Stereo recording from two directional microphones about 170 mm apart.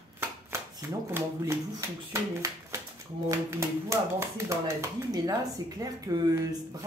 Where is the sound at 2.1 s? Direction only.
15° right (ahead or behind).